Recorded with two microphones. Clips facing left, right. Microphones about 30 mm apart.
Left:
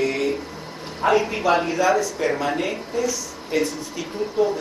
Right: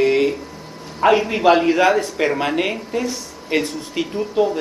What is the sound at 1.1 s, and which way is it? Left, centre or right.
Speech, right.